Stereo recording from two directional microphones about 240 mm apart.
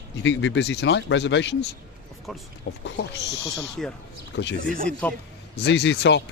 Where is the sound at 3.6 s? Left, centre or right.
Centre.